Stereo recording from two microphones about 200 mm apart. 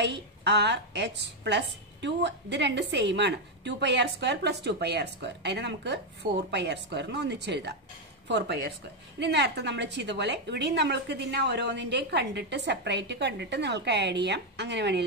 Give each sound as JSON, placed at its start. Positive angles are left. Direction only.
{"t": 0.0, "sound": "a woman's voice", "side_deg": -60}